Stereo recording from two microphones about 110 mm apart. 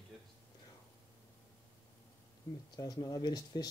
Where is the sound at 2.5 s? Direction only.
35° left (ahead or behind).